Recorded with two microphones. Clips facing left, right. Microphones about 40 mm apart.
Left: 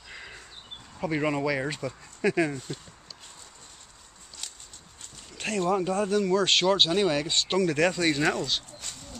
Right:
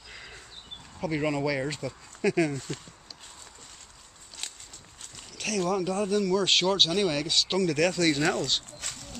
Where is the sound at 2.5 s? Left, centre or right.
Right.